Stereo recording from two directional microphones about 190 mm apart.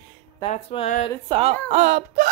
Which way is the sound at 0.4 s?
30° left (ahead or behind).